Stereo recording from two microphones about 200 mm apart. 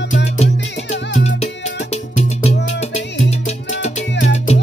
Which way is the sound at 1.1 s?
35° left (ahead or behind).